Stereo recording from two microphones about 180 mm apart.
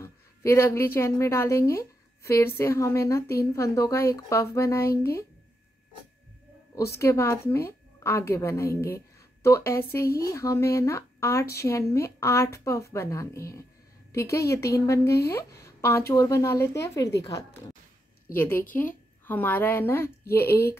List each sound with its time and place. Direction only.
0.0 s a woman's voice: 15° left (ahead or behind)
7.0 s a woman's voice: 15° left (ahead or behind)